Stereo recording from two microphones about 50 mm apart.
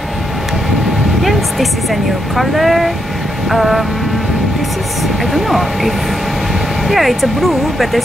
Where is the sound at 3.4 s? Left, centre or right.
Centre.